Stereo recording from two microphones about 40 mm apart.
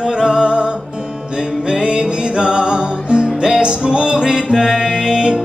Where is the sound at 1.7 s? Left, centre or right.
Right.